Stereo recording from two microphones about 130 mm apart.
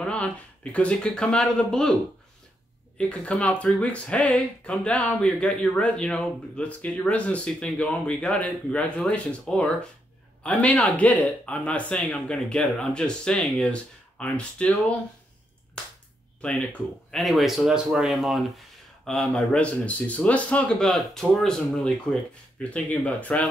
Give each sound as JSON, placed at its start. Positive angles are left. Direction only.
{"t": 0.0, "sound": "speech", "side_deg": 10}
{"t": 3.0, "sound": "speech", "side_deg": 10}
{"t": 16.3, "sound": "speech", "side_deg": 10}